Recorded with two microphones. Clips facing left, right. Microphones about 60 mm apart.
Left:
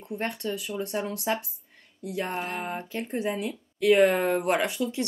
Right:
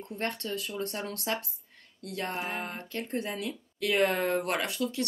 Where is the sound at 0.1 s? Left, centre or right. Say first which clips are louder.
Left 3 dB; centre.